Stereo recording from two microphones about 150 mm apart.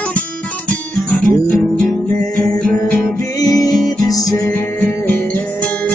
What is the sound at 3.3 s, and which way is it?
Music, 25° left (ahead or behind).